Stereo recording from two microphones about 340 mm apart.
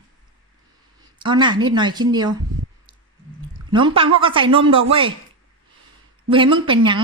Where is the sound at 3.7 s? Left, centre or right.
Centre.